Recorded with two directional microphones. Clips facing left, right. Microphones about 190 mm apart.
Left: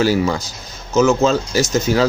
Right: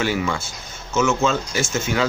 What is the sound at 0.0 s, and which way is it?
Speech, 35° left (ahead or behind).